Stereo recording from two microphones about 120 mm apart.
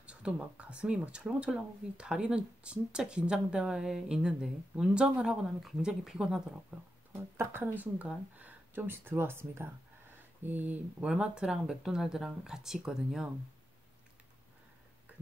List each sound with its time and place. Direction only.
0.0 s speech: 10° right (ahead or behind)